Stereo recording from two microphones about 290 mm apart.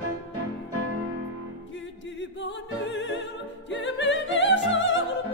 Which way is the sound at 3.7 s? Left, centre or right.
Left.